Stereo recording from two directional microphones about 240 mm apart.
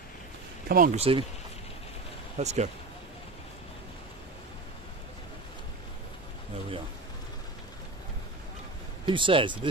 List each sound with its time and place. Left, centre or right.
0.7 s speech: right
2.3 s speech: right
9.0 s speech: right